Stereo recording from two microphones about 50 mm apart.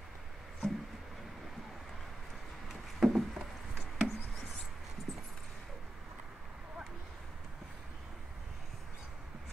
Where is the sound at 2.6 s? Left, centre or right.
Centre.